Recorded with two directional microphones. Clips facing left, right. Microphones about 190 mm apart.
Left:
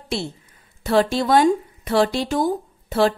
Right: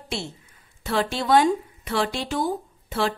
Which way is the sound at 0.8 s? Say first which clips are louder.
Left 5 dB; 40° left (ahead or behind).